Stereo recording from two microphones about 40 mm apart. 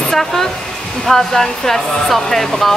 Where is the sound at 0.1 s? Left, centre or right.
Centre.